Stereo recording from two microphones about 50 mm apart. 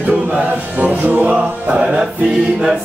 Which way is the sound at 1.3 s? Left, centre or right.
Centre.